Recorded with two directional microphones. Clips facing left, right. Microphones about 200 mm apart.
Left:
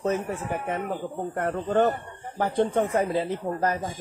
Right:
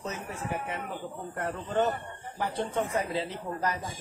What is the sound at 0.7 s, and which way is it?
Speech, 50° left (ahead or behind).